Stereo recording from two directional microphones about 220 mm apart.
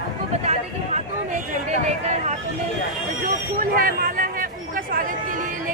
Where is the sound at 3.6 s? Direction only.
40° right (ahead or behind).